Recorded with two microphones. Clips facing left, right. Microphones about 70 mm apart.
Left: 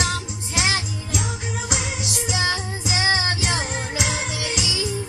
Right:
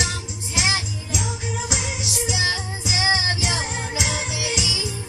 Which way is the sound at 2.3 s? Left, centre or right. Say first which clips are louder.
Left 2 dB; left.